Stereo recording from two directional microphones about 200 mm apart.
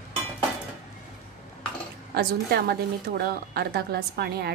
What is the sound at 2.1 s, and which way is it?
A woman's voice, 50° right (ahead or behind).